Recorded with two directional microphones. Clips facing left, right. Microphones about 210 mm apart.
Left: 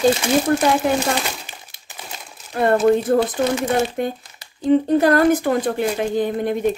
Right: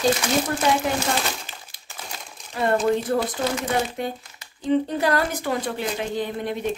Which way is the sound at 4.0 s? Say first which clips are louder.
Left 5 dB; 50° left (ahead or behind).